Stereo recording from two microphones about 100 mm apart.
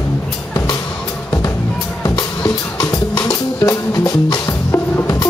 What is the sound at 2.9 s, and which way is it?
Music, 30° left (ahead or behind).